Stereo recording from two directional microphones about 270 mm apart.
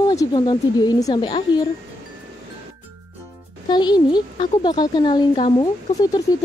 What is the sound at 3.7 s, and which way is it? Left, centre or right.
A woman's voice, centre.